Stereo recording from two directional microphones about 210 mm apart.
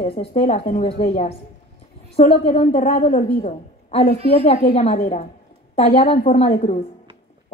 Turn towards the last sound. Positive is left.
turn(degrees=30)  # may be behind; listen again after turning